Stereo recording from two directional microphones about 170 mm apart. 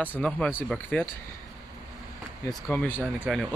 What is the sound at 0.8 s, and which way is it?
Speech, 10° left (ahead or behind).